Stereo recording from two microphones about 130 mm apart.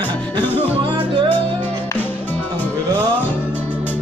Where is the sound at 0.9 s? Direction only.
40° right (ahead or behind).